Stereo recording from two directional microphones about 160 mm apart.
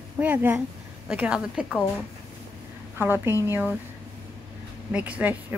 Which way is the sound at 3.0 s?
15° right (ahead or behind).